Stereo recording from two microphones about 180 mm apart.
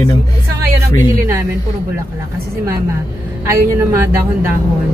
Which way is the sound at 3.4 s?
15° right (ahead or behind).